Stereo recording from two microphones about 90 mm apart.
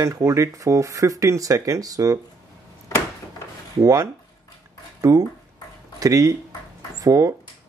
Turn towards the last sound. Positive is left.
turn(degrees=-40)  # may be behind; listen again after turning